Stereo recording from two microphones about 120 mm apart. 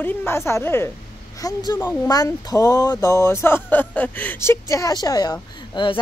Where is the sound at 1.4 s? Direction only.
35° left (ahead or behind).